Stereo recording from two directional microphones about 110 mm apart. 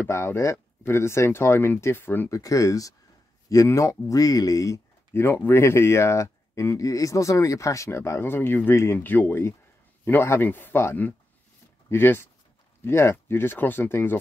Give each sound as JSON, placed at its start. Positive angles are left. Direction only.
{"t": 0.0, "sound": "speech", "side_deg": 20}
{"t": 5.2, "sound": "speech", "side_deg": 20}